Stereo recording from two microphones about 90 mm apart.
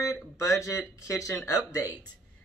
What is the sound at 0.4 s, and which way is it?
Speech, 35° left (ahead or behind).